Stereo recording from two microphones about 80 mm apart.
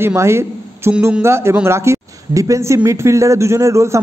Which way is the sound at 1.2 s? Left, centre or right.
Right.